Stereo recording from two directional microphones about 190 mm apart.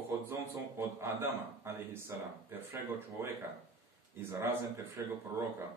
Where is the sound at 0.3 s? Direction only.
15° right (ahead or behind).